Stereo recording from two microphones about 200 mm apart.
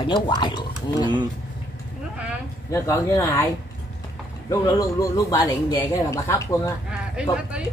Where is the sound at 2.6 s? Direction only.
15° left (ahead or behind).